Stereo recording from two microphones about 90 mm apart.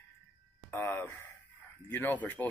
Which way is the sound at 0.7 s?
25° left (ahead or behind).